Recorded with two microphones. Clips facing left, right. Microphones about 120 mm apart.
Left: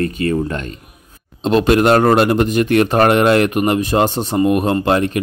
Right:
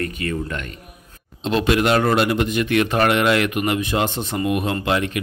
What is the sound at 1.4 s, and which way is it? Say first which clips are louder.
A man's voice: left 6 dB; 45° left (ahead or behind).